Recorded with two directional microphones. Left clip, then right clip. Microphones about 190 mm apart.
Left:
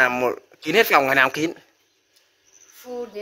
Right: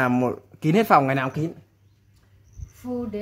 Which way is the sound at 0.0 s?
5° right (ahead or behind).